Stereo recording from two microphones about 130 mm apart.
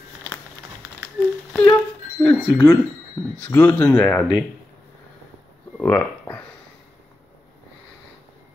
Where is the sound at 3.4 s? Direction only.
20° left (ahead or behind).